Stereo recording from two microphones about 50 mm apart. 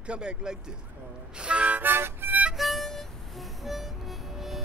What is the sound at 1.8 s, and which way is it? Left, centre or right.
Music, right.